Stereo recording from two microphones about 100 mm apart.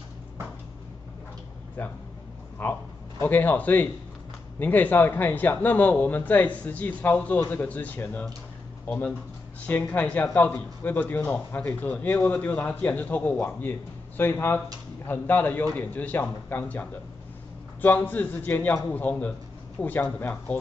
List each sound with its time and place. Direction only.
1.8 s a man's voice: 15° left (ahead or behind)
17.8 s a man's voice: 20° left (ahead or behind)